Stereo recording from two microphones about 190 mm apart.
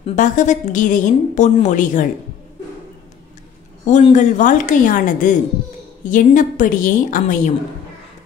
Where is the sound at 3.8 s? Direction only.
40° left (ahead or behind).